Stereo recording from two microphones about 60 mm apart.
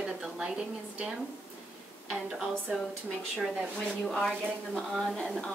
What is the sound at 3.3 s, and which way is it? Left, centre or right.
Speech, centre.